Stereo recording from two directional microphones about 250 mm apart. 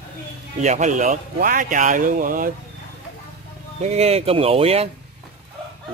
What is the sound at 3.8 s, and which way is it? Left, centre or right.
Speech, right.